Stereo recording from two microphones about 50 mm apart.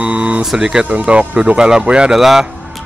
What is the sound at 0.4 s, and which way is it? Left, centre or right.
Speech, centre.